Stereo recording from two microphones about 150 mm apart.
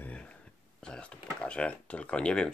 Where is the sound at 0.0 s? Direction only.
10° left (ahead or behind).